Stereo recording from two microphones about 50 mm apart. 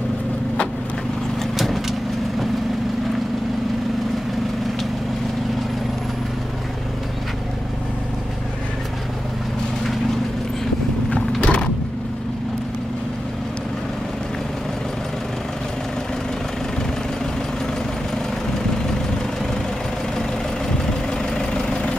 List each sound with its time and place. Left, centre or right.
1.6 s vehicle: centre
11.1 s mechanisms: left
21.1 s vehicle: centre